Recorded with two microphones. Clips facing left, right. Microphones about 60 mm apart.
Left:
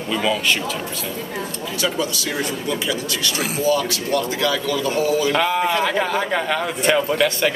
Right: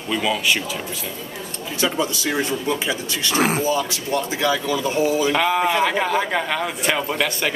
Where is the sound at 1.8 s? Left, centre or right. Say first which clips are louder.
Right 1 dB; right.